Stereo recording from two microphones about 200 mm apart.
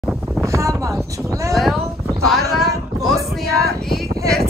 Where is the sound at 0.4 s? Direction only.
15° right (ahead or behind).